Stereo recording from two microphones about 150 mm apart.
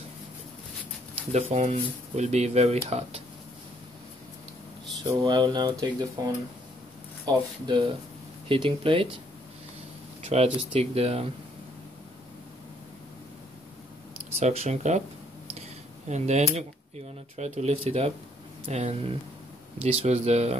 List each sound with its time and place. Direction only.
1.3 s speech: 50° right (ahead or behind)
5.2 s speech: 30° right (ahead or behind)
10.2 s speech: 45° right (ahead or behind)
14.4 s speech: 45° right (ahead or behind)
16.1 s speech: 50° right (ahead or behind)